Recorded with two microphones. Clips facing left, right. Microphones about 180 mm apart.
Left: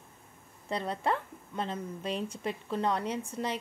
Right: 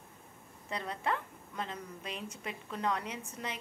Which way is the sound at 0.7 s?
30° left (ahead or behind).